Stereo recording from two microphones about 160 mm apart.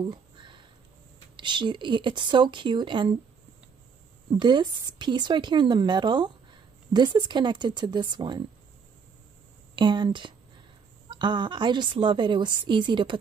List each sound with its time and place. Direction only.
0.0 s a sound: 30° right (ahead or behind)
1.3 s a woman's voice: 30° right (ahead or behind)
4.4 s a woman's voice: 30° right (ahead or behind)
9.8 s a woman's voice: 30° right (ahead or behind)